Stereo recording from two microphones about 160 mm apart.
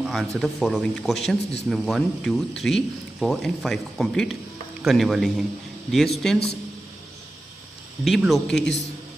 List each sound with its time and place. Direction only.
0.0 s speech: centre (ahead or behind)
8.0 s speech: centre (ahead or behind)